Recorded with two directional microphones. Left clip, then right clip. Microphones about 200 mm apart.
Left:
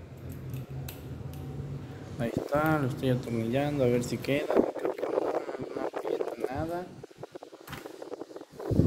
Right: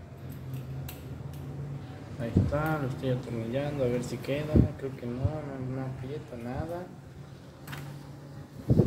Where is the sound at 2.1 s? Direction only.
50° left (ahead or behind).